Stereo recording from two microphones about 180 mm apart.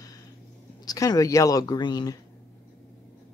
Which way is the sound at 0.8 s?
20° left (ahead or behind).